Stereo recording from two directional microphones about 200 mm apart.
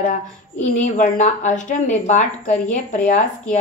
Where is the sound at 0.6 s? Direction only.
40° left (ahead or behind).